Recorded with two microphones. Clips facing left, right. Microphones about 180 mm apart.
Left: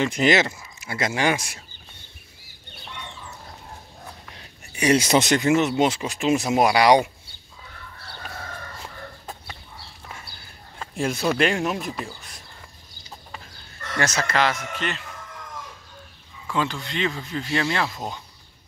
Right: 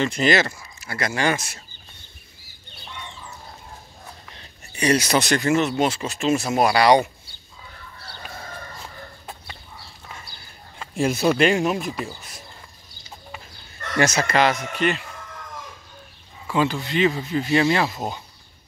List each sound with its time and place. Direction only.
0.0 s speech: 15° left (ahead or behind)
4.3 s speech: 10° left (ahead or behind)
10.8 s speech: 5° right (ahead or behind)
13.9 s speech: 10° right (ahead or behind)
16.5 s speech: 5° right (ahead or behind)